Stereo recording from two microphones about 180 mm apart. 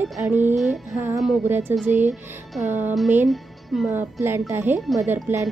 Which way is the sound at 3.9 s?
10° right (ahead or behind).